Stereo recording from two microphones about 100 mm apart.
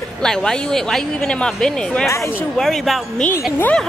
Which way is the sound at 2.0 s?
30° left (ahead or behind).